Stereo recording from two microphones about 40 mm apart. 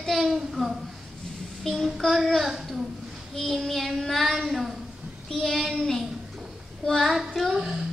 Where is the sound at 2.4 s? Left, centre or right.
Centre.